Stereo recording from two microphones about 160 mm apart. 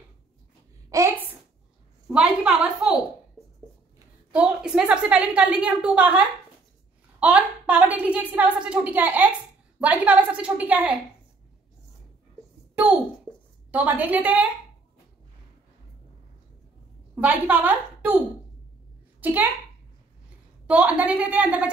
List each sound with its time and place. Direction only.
0.8 s a sound: 20° right (ahead or behind)
2.0 s a woman's voice: 5° right (ahead or behind)
4.3 s a woman's voice: 10° right (ahead or behind)
13.7 s a woman's voice: 10° right (ahead or behind)
17.1 s a woman's voice: 10° right (ahead or behind)
19.2 s a woman's voice: 10° right (ahead or behind)
20.6 s a woman's voice: 10° right (ahead or behind)